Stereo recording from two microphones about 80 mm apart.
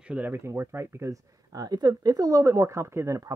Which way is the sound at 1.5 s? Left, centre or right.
Right.